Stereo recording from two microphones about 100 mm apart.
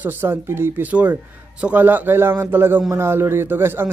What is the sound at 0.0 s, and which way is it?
Speech, 20° right (ahead or behind).